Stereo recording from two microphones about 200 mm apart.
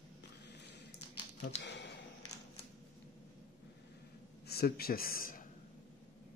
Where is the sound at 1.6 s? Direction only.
60° left (ahead or behind).